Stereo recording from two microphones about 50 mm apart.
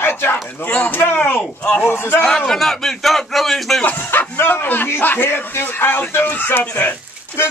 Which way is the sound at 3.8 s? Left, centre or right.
Left.